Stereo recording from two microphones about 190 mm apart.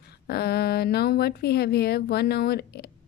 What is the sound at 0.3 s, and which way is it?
A woman's voice, 55° left (ahead or behind).